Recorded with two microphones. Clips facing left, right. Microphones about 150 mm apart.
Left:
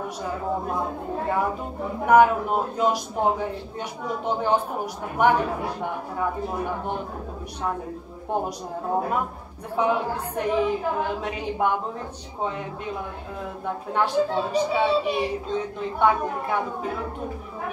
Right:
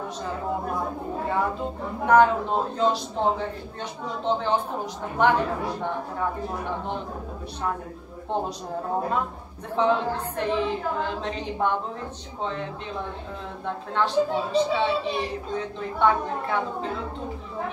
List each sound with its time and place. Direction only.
1.3 s a woman's voice: 10° left (ahead or behind)
8.3 s a woman's voice: 10° left (ahead or behind)
9.8 s a woman's voice: 10° left (ahead or behind)